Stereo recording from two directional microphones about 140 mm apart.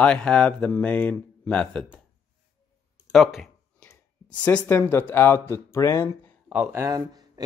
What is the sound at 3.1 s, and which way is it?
Speech, centre (ahead or behind).